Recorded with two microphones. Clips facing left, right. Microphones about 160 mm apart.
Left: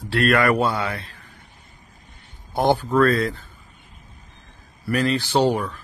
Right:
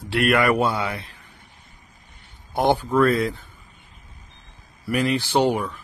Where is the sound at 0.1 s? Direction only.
15° right (ahead or behind).